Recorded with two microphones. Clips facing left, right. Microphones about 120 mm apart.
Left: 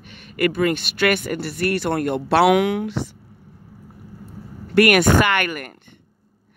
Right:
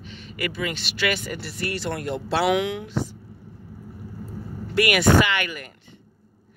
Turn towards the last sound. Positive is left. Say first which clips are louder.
# left 4 dB
turn(degrees=55)  # may be behind; listen again after turning